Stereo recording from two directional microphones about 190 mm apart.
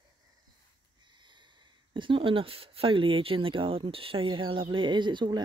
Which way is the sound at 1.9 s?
25° right (ahead or behind).